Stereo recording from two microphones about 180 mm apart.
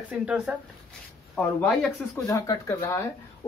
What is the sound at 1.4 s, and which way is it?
Speech, 5° left (ahead or behind).